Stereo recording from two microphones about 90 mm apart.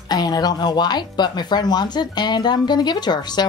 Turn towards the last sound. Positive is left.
turn(degrees=50)  # may be behind; listen again after turning